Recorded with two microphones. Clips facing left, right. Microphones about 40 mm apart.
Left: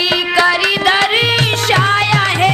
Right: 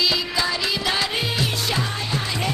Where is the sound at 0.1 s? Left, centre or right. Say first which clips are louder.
Left 11 dB; left.